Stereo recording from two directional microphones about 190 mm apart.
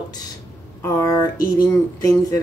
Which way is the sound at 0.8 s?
20° left (ahead or behind).